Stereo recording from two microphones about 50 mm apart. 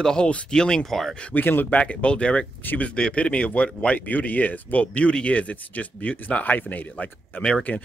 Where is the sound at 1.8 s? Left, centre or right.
Left.